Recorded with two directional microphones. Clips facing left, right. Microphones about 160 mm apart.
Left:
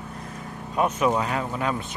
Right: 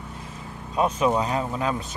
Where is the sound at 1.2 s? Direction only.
30° right (ahead or behind).